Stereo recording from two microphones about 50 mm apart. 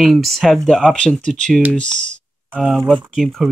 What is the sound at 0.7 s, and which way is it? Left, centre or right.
Speech, centre.